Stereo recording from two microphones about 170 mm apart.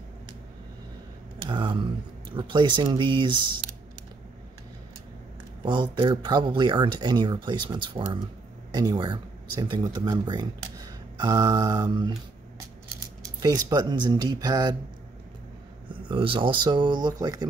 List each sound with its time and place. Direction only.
1.4 s speech: 30° right (ahead or behind)
5.7 s speech: 30° right (ahead or behind)
13.2 s speech: 20° right (ahead or behind)
15.9 s speech: 30° right (ahead or behind)